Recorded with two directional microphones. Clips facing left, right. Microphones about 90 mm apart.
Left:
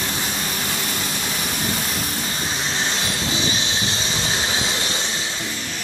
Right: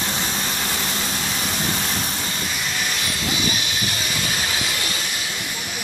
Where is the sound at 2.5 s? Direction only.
30° left (ahead or behind).